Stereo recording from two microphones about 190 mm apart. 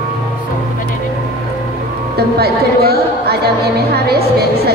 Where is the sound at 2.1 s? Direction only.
55° right (ahead or behind).